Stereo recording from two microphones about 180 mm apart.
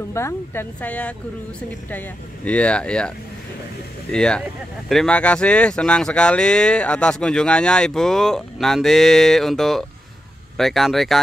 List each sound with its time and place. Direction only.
0.1 s speech: 15° left (ahead or behind)
4.1 s speech: 5° left (ahead or behind)